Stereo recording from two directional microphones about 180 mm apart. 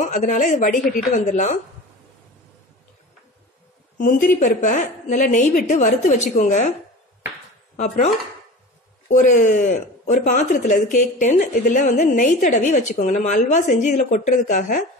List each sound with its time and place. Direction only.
0.0 s speech: 45° left (ahead or behind)
4.0 s speech: 50° left (ahead or behind)
7.7 s chopping: 45° left (ahead or behind)
9.1 s speech: 45° left (ahead or behind)